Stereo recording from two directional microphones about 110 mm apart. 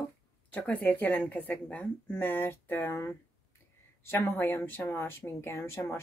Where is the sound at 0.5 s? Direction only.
15° left (ahead or behind).